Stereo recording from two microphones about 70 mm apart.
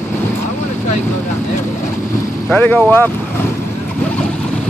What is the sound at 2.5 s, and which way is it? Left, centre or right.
Speech, left.